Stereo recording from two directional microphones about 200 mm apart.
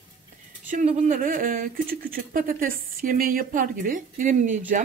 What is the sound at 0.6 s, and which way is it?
Speech, 40° right (ahead or behind).